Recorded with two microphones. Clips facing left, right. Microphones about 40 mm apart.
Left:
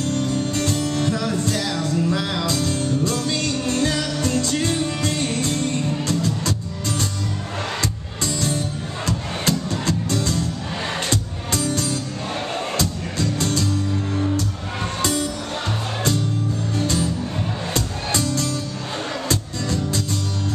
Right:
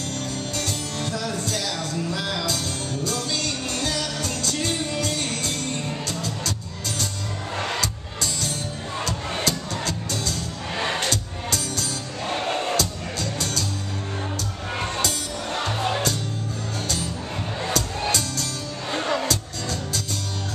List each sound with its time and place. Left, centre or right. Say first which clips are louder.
0.1 s music: left 7 dB; left
7.8 s music: left 2 dB; left
12.3 s music: right 3 dB; centre
12.7 s music: left 2 dB; left
15.0 s music: left 4 dB; left
16.8 s music: left 7 dB; left
18.1 s music: left 5 dB; left